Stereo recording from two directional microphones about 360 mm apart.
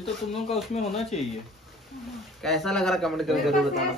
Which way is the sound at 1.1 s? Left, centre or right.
Centre.